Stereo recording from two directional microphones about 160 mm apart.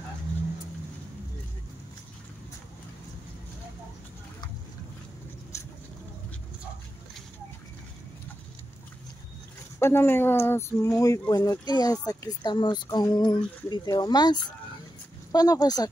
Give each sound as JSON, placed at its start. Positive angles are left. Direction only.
{"t": 5.5, "sound": "vehicle", "side_deg": 20}
{"t": 9.8, "sound": "speech", "side_deg": 15}